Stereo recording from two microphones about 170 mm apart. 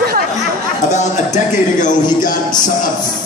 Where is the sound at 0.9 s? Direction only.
45° left (ahead or behind).